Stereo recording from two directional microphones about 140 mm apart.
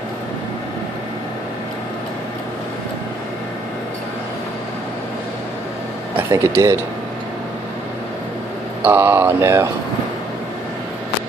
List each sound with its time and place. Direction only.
6.3 s speech: 20° right (ahead or behind)
8.8 s speech: 15° right (ahead or behind)